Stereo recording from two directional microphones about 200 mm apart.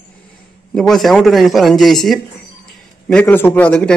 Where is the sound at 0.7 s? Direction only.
Centre (ahead or behind).